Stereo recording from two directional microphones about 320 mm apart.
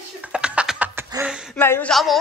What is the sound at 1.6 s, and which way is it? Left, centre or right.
Speech, centre.